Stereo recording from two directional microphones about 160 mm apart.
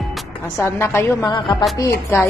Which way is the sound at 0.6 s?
15° left (ahead or behind).